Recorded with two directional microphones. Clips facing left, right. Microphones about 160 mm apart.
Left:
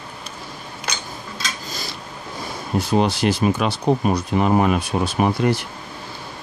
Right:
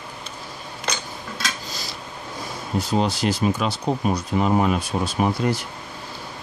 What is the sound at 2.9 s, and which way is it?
Speech, 65° left (ahead or behind).